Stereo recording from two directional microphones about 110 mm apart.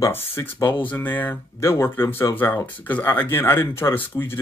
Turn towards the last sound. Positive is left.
turn(degrees=20)  # may be behind; listen again after turning